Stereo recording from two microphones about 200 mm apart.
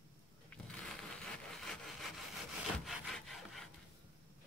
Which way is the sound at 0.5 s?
5° left (ahead or behind).